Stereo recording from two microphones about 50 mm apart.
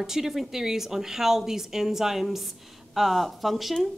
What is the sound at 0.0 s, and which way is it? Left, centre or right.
A woman's voice, centre.